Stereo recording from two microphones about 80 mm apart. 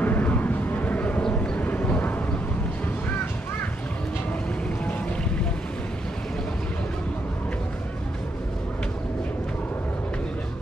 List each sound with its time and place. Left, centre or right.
0.0 s vehicle: left